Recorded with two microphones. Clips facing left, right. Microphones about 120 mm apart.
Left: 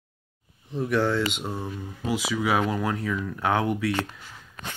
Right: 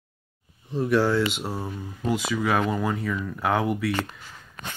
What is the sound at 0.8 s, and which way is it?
Speech, 5° right (ahead or behind).